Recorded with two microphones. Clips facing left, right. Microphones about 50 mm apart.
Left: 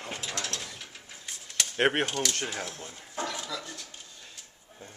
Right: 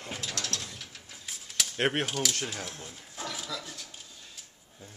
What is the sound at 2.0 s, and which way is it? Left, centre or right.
Speech, centre.